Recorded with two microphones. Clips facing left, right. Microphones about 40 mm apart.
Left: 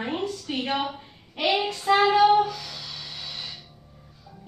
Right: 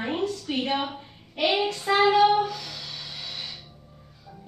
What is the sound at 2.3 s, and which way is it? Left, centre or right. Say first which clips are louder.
Speech: left 3 dB; centre.